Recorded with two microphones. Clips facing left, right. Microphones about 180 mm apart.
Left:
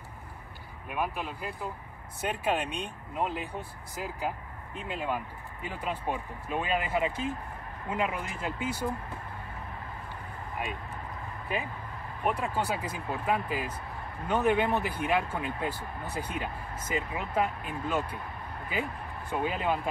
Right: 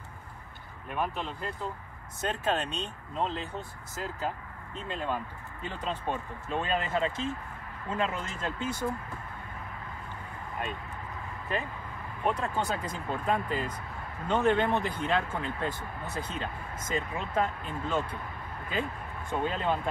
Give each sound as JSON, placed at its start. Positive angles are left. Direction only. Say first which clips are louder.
{"t": 0.8, "sound": "speech", "louder": "even", "side_deg": 10}
{"t": 11.5, "sound": "speech", "louder": "even", "side_deg": 10}